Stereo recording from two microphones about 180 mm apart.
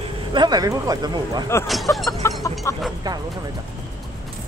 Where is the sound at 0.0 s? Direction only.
25° right (ahead or behind).